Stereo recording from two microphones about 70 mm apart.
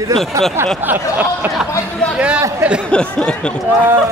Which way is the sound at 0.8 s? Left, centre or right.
Right.